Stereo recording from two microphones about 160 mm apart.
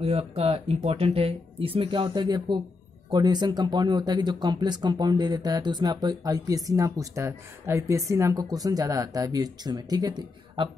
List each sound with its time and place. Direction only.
0.0 s speech: 35° right (ahead or behind)